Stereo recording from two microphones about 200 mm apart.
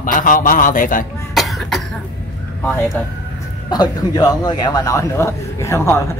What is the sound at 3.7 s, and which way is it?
A man's voice, 20° left (ahead or behind).